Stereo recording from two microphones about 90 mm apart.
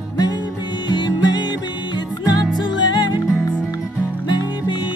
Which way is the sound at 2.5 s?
55° left (ahead or behind).